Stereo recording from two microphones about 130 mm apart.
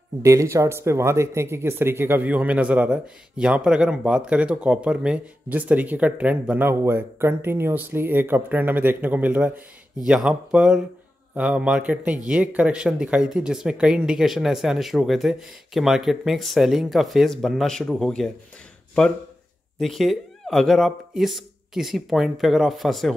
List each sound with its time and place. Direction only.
0.2 s speech: 25° right (ahead or behind); by 18.3 s 5° left (ahead or behind)
19.8 s speech: centre (ahead or behind)